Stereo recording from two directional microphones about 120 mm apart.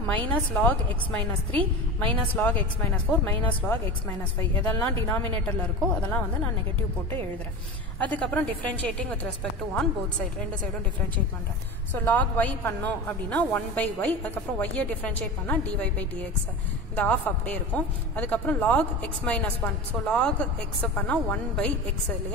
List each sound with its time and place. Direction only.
0.0 s a woman's voice: 15° left (ahead or behind)
8.0 s a woman's voice: 10° left (ahead or behind)
12.0 s a woman's voice: 15° left (ahead or behind)